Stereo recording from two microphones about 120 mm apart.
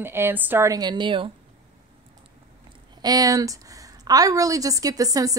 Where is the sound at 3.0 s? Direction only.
30° right (ahead or behind).